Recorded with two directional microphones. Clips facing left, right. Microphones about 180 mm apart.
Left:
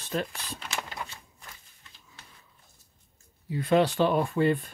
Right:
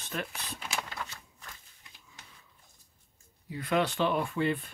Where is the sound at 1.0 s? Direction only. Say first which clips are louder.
Left 2 dB; 15° left (ahead or behind).